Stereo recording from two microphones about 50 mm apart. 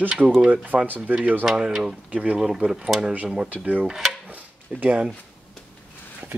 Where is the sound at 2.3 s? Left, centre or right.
Centre.